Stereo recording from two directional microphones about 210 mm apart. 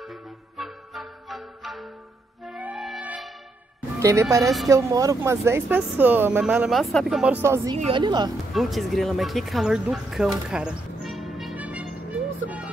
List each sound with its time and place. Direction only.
0.0 s music: centre (ahead or behind)
4.0 s speech: 15° right (ahead or behind)
7.7 s a woman's voice: 25° right (ahead or behind)
8.5 s speech: centre (ahead or behind)